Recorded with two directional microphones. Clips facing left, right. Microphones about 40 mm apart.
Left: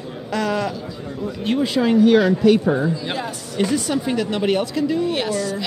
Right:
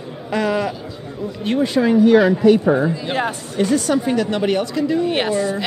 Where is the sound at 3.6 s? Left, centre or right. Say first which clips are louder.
Right 3 dB; centre.